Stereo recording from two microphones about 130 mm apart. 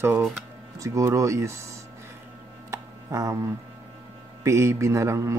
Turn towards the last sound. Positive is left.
turn(degrees=-20)  # may be behind; listen again after turning